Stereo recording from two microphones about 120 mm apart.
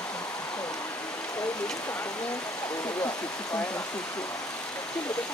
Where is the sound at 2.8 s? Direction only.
30° left (ahead or behind).